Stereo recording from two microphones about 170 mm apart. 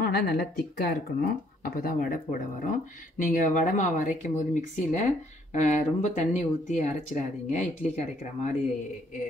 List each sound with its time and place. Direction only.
0.0 s speech: 65° left (ahead or behind); by 8.5 s 45° left (ahead or behind)